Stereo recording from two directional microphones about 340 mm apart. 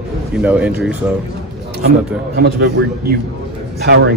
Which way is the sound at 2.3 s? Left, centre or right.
Right.